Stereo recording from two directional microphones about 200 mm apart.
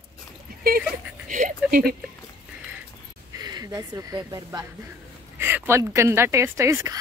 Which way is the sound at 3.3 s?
20° right (ahead or behind).